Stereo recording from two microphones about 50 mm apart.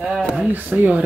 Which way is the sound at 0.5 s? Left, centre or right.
Right.